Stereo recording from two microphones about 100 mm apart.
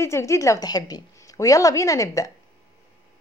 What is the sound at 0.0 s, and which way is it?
A woman's voice, 30° left (ahead or behind).